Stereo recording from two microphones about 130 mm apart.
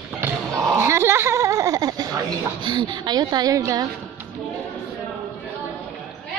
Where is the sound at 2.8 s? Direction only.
35° right (ahead or behind).